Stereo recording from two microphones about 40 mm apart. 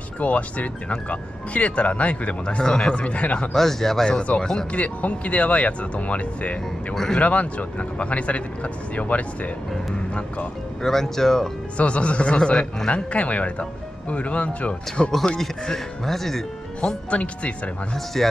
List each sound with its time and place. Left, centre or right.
0.2 s speech: left
2.4 s speech: left
2.9 s speech: left
3.5 s speech: centre
4.7 s speech: left
10.8 s speech: centre
11.7 s speech: left
12.9 s speech: left
15.3 s speech: centre
17.1 s speech: left